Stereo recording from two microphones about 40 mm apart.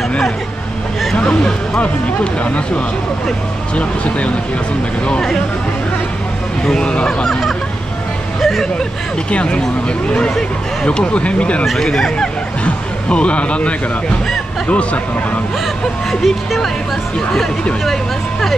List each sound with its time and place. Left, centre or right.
1.1 s speech: left
6.6 s speech: centre
8.4 s speech: centre
9.3 s speech: left
11.8 s speech: centre
12.6 s speech: left
16.1 s speech: centre